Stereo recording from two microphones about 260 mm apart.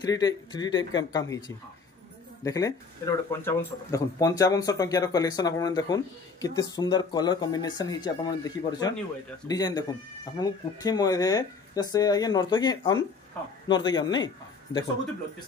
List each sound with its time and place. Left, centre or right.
0.0 s speech: centre
2.4 s a man's voice: centre